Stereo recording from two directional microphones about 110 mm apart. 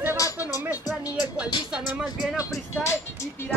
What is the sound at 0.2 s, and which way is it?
Music, 30° left (ahead or behind).